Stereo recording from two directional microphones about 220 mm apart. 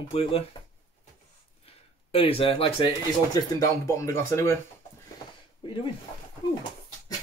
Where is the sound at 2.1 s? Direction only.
25° left (ahead or behind).